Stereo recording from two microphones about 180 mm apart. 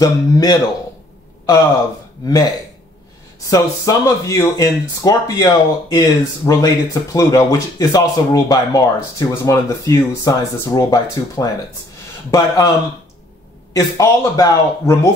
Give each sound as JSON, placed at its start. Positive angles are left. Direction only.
{"t": 0.0, "sound": "speech", "side_deg": 20}
{"t": 2.2, "sound": "speech", "side_deg": 20}
{"t": 13.7, "sound": "a man's voice", "side_deg": 15}